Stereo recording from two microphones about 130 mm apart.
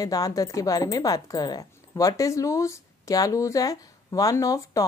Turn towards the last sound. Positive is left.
turn(degrees=25)  # may be behind; listen again after turning